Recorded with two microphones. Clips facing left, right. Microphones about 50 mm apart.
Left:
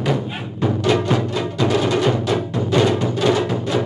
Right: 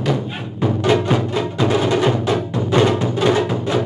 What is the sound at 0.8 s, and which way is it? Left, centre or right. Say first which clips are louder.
Music: right 2 dB; right.